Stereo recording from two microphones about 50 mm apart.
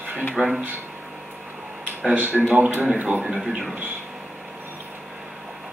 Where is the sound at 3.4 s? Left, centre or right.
Centre.